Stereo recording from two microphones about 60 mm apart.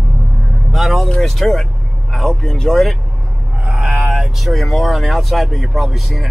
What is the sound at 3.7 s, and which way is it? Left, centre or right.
Vehicle, centre.